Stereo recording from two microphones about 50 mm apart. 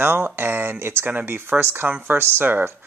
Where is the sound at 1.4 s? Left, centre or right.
Right.